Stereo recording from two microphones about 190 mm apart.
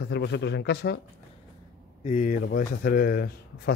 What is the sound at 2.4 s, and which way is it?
Speech, 50° left (ahead or behind).